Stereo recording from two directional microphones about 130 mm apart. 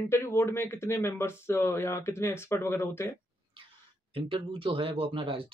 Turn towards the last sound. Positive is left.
turn(degrees=-45)  # may be behind; listen again after turning